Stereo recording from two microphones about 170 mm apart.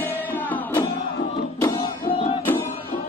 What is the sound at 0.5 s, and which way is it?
Music, 10° left (ahead or behind).